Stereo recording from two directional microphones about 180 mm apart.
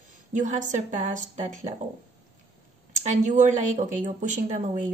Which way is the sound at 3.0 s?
40° right (ahead or behind).